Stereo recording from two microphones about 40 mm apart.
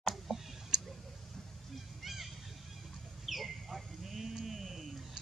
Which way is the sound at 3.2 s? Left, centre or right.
Centre.